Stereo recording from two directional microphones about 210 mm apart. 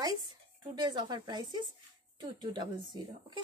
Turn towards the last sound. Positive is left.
turn(degrees=-20)  # may be behind; listen again after turning